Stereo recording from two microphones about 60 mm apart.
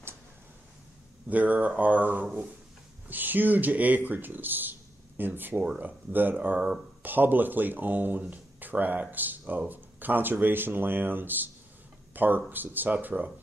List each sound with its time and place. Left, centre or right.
1.3 s speech: right